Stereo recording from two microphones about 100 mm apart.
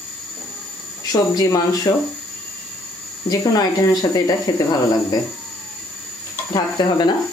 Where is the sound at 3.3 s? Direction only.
40° left (ahead or behind).